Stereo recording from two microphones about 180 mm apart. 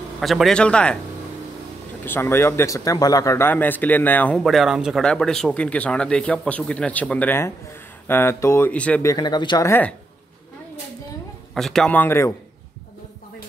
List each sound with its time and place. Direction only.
0.2 s a man's voice: centre (ahead or behind)
2.0 s a man's voice: 15° left (ahead or behind)
9.1 s speech: 20° left (ahead or behind)
9.7 s a man's voice: 10° left (ahead or behind)
11.5 s a man's voice: centre (ahead or behind)